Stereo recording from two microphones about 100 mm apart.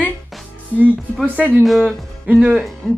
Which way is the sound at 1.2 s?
15° right (ahead or behind).